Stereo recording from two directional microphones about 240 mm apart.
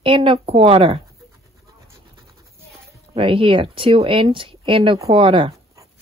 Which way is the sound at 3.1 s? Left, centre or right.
Right.